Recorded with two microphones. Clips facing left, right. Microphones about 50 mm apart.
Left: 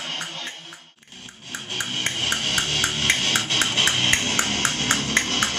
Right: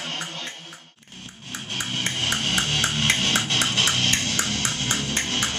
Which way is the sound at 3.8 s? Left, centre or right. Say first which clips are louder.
Left 4 dB; centre.